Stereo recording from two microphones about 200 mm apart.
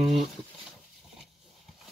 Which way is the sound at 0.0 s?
Centre (ahead or behind).